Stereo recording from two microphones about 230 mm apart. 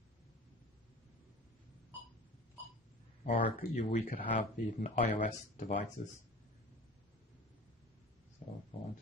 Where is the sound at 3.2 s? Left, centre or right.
Left.